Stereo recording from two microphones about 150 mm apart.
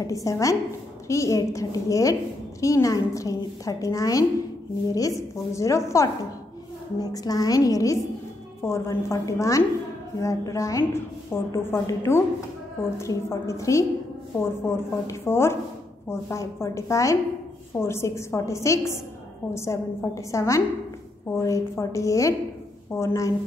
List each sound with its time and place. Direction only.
0.0 s a woman's voice: 20° left (ahead or behind)